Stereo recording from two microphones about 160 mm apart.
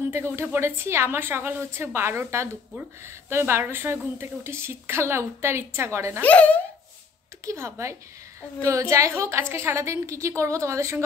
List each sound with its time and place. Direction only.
0.1 s a woman's voice: 15° right (ahead or behind)
6.2 s speech: 10° left (ahead or behind)
7.4 s a woman's voice: 15° right (ahead or behind)